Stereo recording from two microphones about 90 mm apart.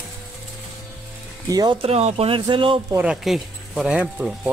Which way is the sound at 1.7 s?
90° right.